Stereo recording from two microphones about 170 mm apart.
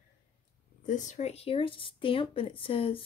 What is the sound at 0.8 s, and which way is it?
Speech, 45° left (ahead or behind).